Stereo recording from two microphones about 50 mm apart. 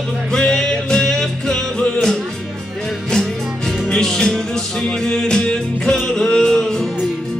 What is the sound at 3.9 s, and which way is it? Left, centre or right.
Music, centre.